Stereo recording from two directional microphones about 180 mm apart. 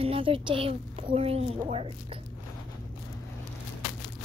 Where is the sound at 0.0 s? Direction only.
30° right (ahead or behind).